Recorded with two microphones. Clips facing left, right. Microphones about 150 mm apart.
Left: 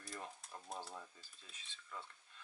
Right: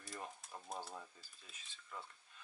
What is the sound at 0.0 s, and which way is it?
Frying, centre (ahead or behind).